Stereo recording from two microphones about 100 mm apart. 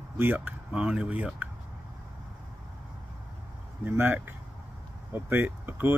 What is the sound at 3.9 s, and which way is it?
Speech, 20° right (ahead or behind).